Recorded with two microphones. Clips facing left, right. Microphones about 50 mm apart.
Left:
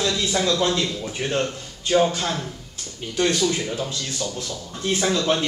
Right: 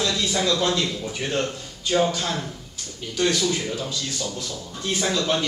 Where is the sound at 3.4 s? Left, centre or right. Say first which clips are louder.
Left 2 dB; centre.